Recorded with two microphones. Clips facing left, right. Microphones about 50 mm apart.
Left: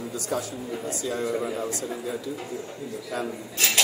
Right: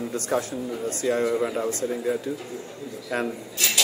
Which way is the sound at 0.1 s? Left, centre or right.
Right.